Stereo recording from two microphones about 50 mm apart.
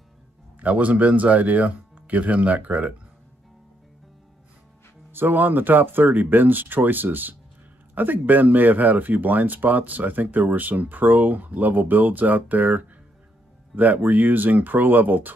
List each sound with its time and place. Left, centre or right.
0.6 s speech: right
5.1 s speech: right